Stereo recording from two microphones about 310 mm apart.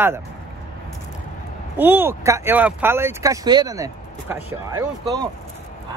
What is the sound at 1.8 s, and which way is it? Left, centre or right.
Speech, centre.